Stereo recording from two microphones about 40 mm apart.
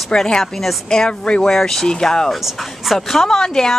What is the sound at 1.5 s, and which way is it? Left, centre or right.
Speech, centre.